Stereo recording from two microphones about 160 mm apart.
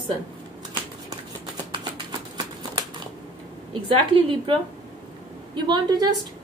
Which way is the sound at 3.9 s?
35° right (ahead or behind).